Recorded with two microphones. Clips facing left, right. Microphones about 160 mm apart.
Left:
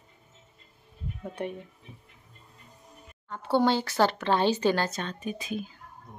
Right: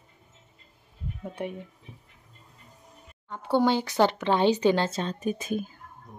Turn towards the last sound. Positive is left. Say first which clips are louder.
# right 4 dB
turn(degrees=-45)  # may be behind; listen again after turning